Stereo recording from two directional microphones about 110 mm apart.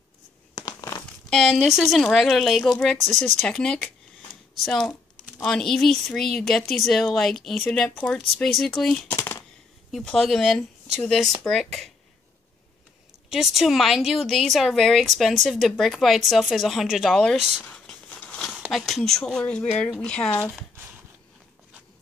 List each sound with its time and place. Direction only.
0.6 s crumpling: 35° left (ahead or behind)
1.3 s speech: 5° left (ahead or behind)
9.1 s a sound: 25° left (ahead or behind)
9.8 s speech: centre (ahead or behind)
13.3 s speech: 5° right (ahead or behind)
17.6 s a sound: 10° left (ahead or behind)
18.5 s speech: centre (ahead or behind)